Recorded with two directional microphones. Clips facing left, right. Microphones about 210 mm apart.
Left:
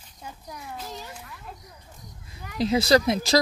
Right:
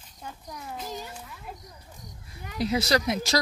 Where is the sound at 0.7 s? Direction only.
5° right (ahead or behind).